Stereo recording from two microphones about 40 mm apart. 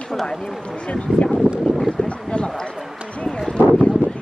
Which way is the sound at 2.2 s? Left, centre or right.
Left.